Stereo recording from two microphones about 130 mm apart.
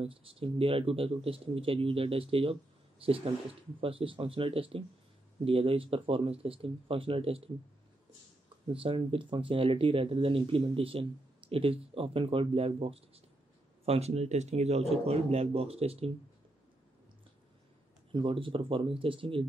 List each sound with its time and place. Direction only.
0.0 s speech: 45° right (ahead or behind)
8.7 s speech: 45° right (ahead or behind)
18.1 s speech: 40° right (ahead or behind)